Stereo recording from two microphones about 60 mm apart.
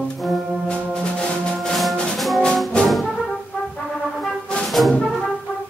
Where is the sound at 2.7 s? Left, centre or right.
Centre.